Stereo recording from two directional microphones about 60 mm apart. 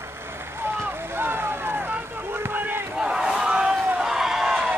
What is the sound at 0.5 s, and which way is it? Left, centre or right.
Boat, right.